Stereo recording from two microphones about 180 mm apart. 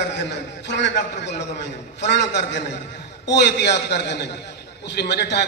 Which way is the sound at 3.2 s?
70° left (ahead or behind).